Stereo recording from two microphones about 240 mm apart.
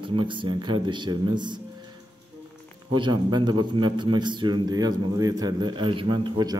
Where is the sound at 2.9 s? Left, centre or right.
Centre.